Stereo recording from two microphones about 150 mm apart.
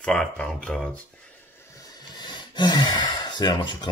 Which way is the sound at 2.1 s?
30° left (ahead or behind).